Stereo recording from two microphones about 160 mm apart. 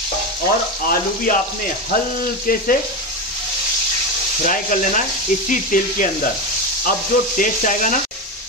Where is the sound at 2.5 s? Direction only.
65° left (ahead or behind).